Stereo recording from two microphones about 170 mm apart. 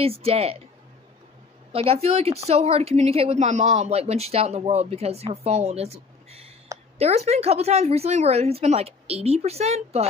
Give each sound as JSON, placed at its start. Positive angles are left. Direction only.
{"t": 0.0, "sound": "speech", "side_deg": -35}
{"t": 1.7, "sound": "speech", "side_deg": -35}